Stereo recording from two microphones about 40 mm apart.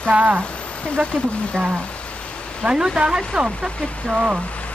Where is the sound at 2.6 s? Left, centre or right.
Centre.